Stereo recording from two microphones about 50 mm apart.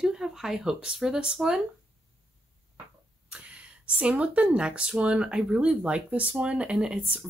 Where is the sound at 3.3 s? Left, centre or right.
Right.